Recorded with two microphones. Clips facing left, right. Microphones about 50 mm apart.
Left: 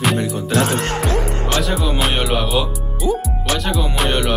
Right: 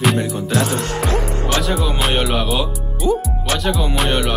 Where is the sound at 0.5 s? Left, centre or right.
Left.